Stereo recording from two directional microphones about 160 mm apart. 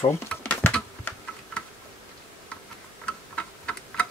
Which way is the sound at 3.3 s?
5° left (ahead or behind).